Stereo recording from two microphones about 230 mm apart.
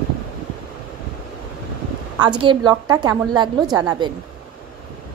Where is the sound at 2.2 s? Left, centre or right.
Right.